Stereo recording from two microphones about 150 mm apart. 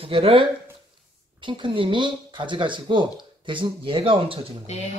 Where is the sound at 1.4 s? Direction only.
35° right (ahead or behind).